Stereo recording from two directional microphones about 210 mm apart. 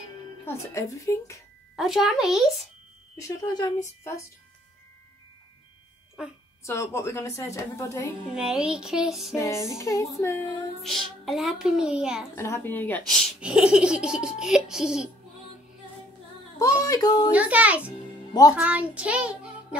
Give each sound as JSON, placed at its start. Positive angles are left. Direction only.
{"t": 0.5, "sound": "a woman's voice", "side_deg": 15}
{"t": 1.8, "sound": "speech", "side_deg": 0}
{"t": 3.2, "sound": "a woman's voice", "side_deg": 15}
{"t": 6.6, "sound": "a woman's voice", "side_deg": 15}
{"t": 8.4, "sound": "speech", "side_deg": -5}
{"t": 9.3, "sound": "a woman's voice", "side_deg": 15}
{"t": 10.8, "sound": "speech", "side_deg": 0}
{"t": 12.4, "sound": "speech", "side_deg": 10}
{"t": 16.5, "sound": "a woman's voice", "side_deg": 15}
{"t": 17.3, "sound": "a child's voice", "side_deg": -5}